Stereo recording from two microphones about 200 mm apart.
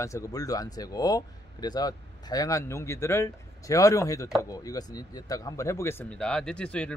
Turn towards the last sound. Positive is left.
turn(degrees=5)  # may be behind; listen again after turning